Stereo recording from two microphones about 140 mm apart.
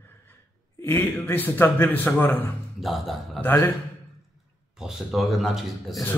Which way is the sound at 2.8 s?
Centre (ahead or behind).